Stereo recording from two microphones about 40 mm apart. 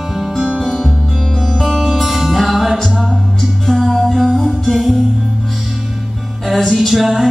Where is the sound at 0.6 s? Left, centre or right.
Centre.